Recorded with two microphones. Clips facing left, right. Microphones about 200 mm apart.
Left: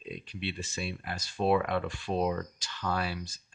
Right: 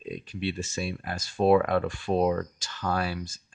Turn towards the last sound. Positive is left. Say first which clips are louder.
# right 4 dB
turn(degrees=-45)  # may be behind; listen again after turning